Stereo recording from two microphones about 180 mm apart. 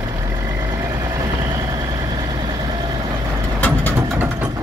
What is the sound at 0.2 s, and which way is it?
Vehicle, 20° right (ahead or behind).